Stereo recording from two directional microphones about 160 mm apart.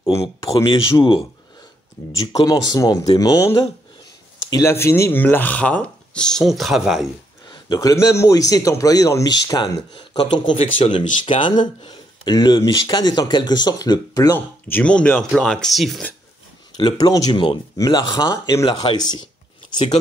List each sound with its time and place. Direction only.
0.4 s speech: 20° left (ahead or behind)
0.7 s speech: 30° left (ahead or behind); by 7.1 s centre (ahead or behind)
7.4 s speech: 25° left (ahead or behind); by 16.1 s centre (ahead or behind)
16.7 s speech: 25° left (ahead or behind)